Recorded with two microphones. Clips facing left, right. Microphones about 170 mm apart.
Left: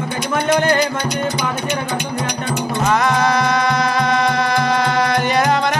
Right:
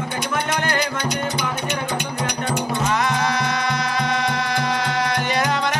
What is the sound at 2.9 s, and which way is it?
Music, 45° left (ahead or behind).